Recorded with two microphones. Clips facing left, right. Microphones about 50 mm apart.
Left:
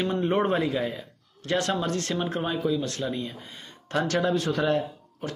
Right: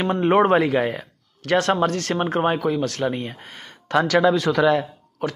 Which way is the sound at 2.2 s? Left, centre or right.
Right.